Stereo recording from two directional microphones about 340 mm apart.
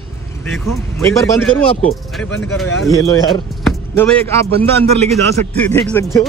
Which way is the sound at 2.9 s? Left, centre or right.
Centre.